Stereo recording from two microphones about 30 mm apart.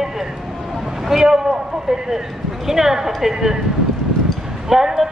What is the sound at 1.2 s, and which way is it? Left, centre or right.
A woman's voice, centre.